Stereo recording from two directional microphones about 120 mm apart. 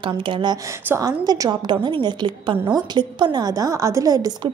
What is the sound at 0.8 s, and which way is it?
A woman's voice, 30° right (ahead or behind).